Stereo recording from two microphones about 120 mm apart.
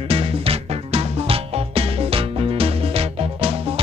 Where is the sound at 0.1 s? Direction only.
50° right (ahead or behind).